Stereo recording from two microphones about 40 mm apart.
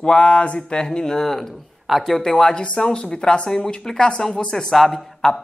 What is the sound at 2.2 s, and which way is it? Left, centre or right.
A man's voice, centre.